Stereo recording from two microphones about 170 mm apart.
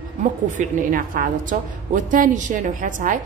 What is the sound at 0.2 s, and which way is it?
A woman's voice, 50° right (ahead or behind).